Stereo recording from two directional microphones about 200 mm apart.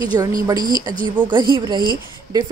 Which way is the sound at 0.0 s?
20° right (ahead or behind).